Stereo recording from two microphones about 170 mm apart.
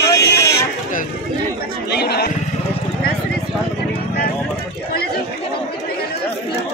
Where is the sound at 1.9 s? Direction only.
75° left (ahead or behind).